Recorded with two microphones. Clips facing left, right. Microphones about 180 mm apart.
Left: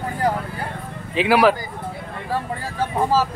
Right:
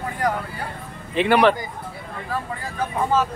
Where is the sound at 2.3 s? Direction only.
30° left (ahead or behind).